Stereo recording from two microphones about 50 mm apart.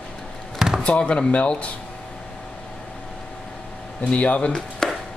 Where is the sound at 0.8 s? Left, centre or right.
Left.